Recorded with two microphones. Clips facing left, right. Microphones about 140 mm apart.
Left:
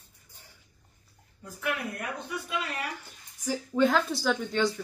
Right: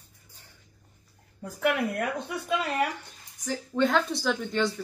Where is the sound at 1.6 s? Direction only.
65° right (ahead or behind).